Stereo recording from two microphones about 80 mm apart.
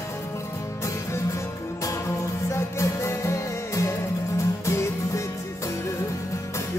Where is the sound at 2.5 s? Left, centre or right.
Left.